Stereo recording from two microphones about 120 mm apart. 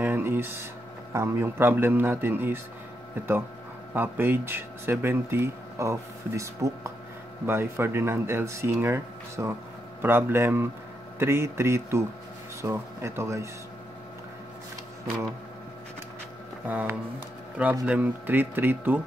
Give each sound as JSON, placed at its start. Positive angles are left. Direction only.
{"t": 0.0, "sound": "a sound", "side_deg": -15}
{"t": 1.1, "sound": "a man's voice", "side_deg": -25}
{"t": 16.6, "sound": "a man's voice", "side_deg": -15}